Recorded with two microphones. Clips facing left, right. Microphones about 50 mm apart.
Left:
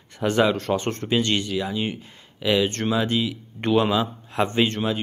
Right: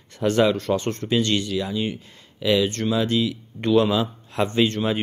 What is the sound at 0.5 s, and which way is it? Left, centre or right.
Speech, left.